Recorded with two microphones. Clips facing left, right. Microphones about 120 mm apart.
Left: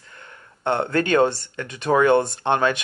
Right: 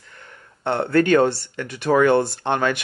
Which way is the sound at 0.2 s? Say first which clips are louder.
Left 1 dB; 20° left (ahead or behind).